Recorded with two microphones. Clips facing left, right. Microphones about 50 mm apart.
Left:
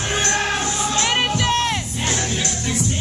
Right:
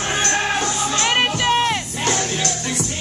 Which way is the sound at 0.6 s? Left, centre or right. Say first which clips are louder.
Right 2 dB; centre.